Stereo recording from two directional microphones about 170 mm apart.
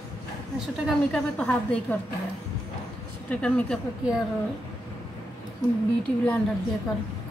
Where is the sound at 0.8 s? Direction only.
5° left (ahead or behind).